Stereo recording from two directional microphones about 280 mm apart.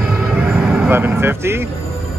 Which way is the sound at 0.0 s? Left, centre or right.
Centre.